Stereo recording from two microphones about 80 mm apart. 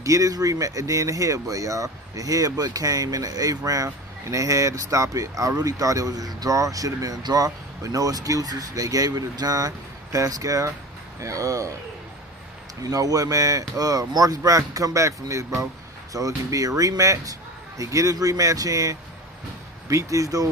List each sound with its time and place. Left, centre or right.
0.0 s speech: right
12.8 s speech: right